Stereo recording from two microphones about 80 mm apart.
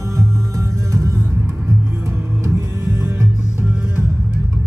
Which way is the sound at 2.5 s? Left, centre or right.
Right.